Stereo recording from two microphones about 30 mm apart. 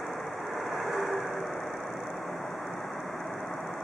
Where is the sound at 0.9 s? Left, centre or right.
Centre.